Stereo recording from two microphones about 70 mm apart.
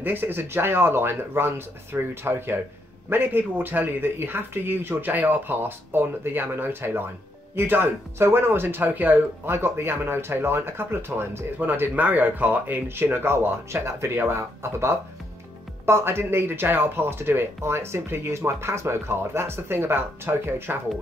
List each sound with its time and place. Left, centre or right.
0.0 s speech: right